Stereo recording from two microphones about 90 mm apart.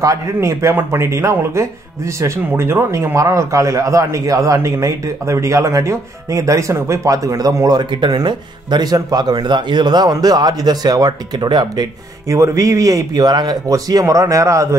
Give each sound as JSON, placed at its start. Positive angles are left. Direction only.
{"t": 0.0, "sound": "a man's voice", "side_deg": -35}
{"t": 12.4, "sound": "a man's voice", "side_deg": -35}